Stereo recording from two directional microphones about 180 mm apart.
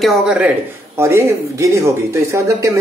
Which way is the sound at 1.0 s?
15° right (ahead or behind).